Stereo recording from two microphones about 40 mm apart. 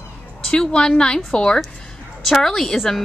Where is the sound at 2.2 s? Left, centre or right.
Centre.